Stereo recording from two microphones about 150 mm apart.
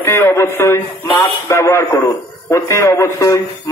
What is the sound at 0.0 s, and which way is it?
A man's voice, 15° left (ahead or behind).